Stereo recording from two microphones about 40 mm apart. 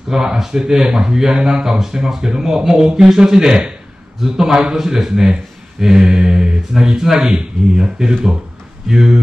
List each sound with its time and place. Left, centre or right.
0.1 s speech: centre
7.3 s speech: right